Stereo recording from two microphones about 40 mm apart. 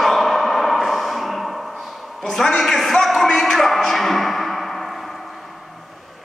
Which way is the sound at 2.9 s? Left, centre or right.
Centre.